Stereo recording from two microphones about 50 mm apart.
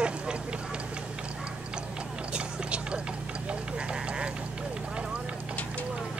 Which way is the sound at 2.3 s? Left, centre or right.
Centre.